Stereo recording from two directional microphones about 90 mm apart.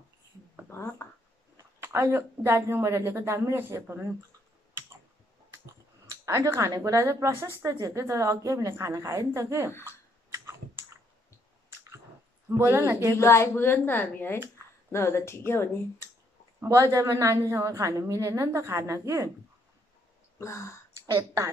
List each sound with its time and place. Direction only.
0.7 s a sound: 30° left (ahead or behind)
1.8 s speech: 25° right (ahead or behind)
6.0 s a sound: 35° right (ahead or behind)
6.8 s a woman's voice: 35° right (ahead or behind)
9.8 s clicking: 25° right (ahead or behind)
12.4 s speech: 25° right (ahead or behind)
13.2 s speech: 30° left (ahead or behind)
16.6 s a woman's voice: 35° right (ahead or behind)
20.3 s speech: 35° left (ahead or behind)